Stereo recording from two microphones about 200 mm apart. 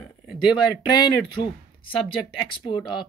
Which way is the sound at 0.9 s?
20° left (ahead or behind).